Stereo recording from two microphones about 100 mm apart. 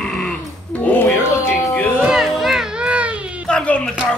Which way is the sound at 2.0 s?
5° right (ahead or behind).